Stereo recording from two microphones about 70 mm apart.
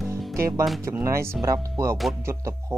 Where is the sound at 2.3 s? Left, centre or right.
Right.